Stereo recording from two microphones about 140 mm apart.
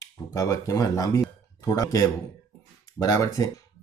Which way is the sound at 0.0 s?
20° left (ahead or behind).